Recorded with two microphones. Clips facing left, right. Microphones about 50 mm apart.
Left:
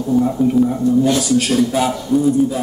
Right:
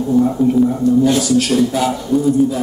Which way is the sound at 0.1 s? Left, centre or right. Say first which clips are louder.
Right 1 dB; centre.